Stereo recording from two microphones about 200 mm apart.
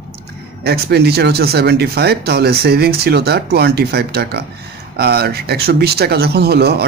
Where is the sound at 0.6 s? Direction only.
55° right (ahead or behind).